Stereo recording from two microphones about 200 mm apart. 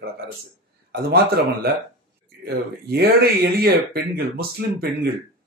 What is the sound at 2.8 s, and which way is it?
Speech, 50° right (ahead or behind).